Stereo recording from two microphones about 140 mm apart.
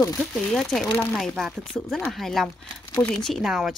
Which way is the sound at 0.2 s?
Centre (ahead or behind).